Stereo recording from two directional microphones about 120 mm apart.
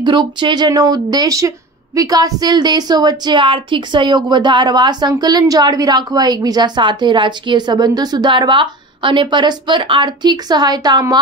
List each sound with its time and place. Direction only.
0.0 s a woman's voice: 40° right (ahead or behind)